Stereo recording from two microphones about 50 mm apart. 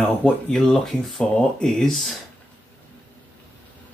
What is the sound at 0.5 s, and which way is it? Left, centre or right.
Speech, centre.